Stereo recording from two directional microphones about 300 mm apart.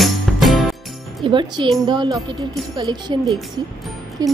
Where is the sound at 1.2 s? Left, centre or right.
Centre.